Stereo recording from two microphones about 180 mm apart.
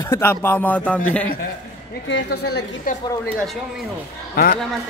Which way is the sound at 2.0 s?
80° left.